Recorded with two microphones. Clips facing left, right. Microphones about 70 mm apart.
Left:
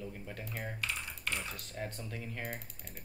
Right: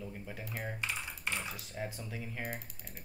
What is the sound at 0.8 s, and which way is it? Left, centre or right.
Typing, centre.